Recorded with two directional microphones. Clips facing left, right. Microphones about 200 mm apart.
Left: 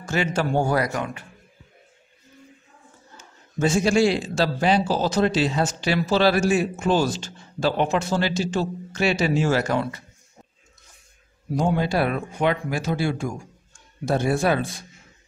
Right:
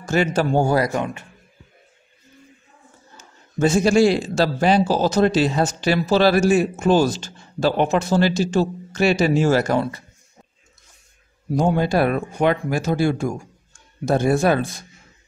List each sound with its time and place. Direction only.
0.0 s speech: 40° right (ahead or behind)
3.5 s speech: 40° right (ahead or behind)
11.5 s speech: 45° right (ahead or behind)